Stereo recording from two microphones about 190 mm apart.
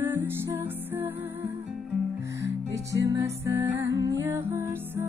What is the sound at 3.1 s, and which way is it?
Music, 15° right (ahead or behind).